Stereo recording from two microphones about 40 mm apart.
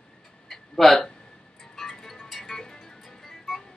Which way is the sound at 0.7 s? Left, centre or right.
Centre.